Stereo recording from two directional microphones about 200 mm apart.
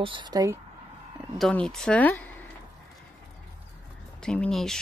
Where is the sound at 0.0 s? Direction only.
25° right (ahead or behind).